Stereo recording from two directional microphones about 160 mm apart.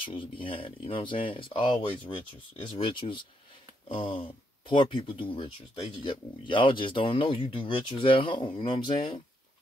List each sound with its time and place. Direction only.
0.0 s speech: 30° left (ahead or behind)